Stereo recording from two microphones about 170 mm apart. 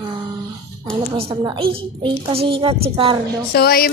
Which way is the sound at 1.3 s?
25° right (ahead or behind).